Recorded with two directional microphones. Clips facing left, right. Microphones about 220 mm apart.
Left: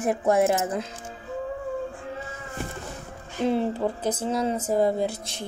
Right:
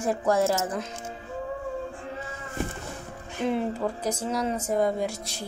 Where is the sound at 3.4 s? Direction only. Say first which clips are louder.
Left 3 dB; 30° left (ahead or behind).